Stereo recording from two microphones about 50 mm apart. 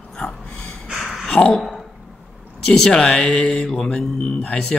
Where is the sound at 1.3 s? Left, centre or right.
Centre.